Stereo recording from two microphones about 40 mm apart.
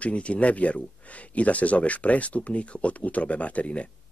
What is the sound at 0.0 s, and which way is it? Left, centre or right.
Speech, left.